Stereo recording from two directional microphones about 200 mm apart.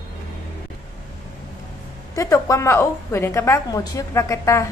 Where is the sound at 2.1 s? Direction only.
15° left (ahead or behind).